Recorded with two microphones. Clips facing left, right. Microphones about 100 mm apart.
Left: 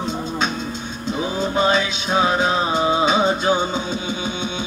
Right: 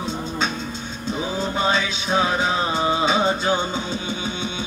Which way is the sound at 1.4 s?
15° left (ahead or behind).